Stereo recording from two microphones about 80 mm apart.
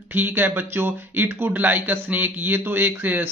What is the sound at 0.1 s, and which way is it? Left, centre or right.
Speech, right.